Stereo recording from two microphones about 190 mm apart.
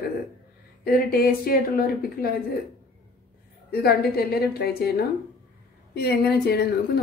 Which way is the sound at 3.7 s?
55° left (ahead or behind).